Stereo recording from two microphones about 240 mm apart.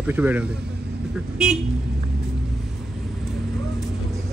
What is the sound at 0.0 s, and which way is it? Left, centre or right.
Speech, centre.